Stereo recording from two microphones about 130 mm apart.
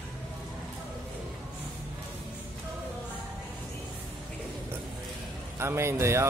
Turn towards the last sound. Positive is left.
turn(degrees=-20)  # may be behind; listen again after turning